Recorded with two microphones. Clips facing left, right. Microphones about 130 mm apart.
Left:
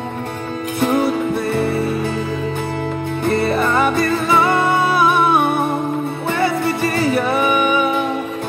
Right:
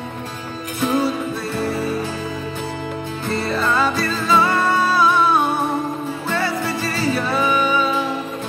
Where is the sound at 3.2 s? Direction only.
60° left (ahead or behind).